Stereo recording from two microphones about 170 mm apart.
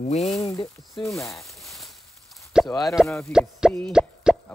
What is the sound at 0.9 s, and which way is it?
Speech, 15° left (ahead or behind).